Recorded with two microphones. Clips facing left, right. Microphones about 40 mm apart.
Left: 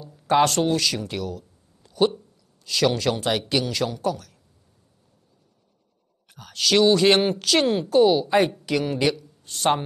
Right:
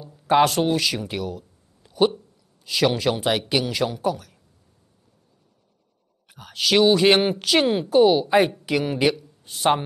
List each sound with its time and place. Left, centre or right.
0.1 s speech: centre
6.3 s a woman's voice: centre